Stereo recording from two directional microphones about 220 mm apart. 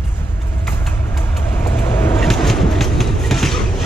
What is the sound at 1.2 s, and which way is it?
Vehicle, 25° left (ahead or behind).